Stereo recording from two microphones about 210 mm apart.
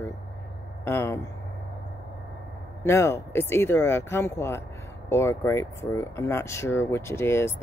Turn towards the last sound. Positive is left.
turn(degrees=10)  # may be behind; listen again after turning